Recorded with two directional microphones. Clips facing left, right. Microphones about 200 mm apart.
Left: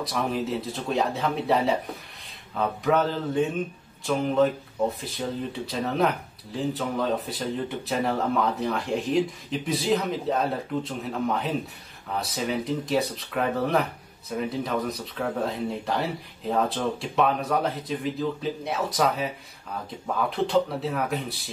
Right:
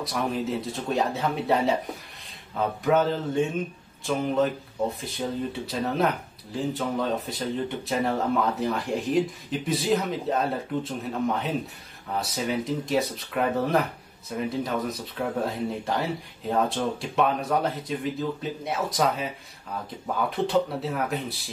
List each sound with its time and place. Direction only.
0.0 s speech: centre (ahead or behind)
20.2 s speech: centre (ahead or behind)